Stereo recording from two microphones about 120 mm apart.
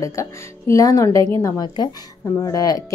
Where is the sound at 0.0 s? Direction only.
25° left (ahead or behind).